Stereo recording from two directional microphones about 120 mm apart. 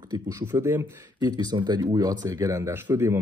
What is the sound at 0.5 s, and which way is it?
Speech, 20° right (ahead or behind).